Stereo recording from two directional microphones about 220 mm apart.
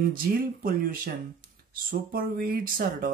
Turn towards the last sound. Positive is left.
turn(degrees=-40)  # may be behind; listen again after turning